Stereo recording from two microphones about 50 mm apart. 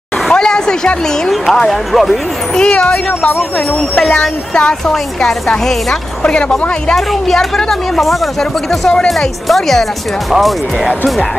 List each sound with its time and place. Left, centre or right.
0.3 s a woman's voice: centre
2.5 s speech: centre
5.6 s speech: centre
6.2 s speech: centre
7.0 s speech: centre